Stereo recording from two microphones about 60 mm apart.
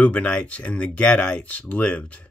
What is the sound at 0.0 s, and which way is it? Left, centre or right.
Speech, left.